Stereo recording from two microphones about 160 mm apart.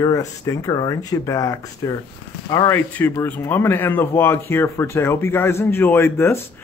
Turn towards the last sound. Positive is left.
turn(degrees=15)  # may be behind; listen again after turning